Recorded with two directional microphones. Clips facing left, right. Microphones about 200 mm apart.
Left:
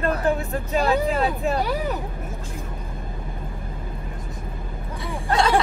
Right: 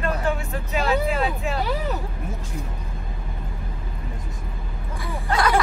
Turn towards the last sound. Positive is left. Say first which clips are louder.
# left 1 dB
turn(degrees=25)  # may be behind; listen again after turning